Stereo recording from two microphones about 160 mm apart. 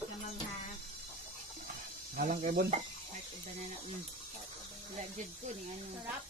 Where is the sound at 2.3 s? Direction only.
60° right (ahead or behind).